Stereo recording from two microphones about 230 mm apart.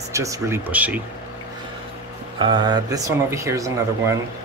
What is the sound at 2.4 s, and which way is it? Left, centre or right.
Speech, centre.